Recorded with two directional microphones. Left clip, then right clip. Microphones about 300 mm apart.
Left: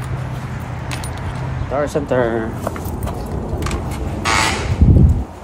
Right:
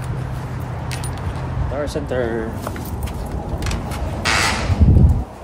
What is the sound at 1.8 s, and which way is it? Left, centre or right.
Speech, centre.